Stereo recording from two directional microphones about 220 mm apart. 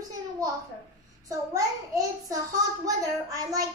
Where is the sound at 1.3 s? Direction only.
15° right (ahead or behind).